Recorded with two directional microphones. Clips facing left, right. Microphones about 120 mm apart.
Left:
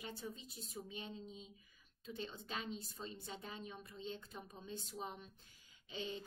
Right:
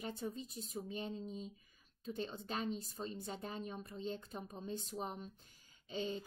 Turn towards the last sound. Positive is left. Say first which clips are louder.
# right 5 dB
turn(degrees=-35)  # may be behind; listen again after turning